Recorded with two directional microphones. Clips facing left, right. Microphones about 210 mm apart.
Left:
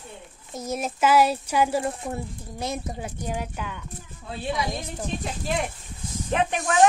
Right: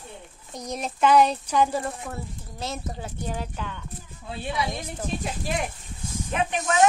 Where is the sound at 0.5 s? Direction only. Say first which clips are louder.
Left 3 dB; 5° left (ahead or behind).